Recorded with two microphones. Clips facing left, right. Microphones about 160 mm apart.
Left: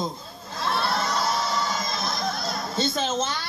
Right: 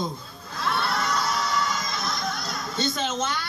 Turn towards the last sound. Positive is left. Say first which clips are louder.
# left 1 dB
turn(degrees=30)  # may be behind; listen again after turning